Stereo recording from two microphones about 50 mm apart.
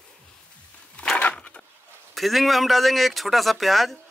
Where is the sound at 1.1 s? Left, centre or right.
Left.